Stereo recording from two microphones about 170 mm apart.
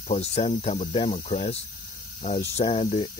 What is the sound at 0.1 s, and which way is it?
Speech, 40° left (ahead or behind).